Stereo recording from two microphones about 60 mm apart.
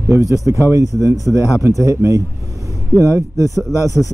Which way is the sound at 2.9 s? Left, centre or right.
Left.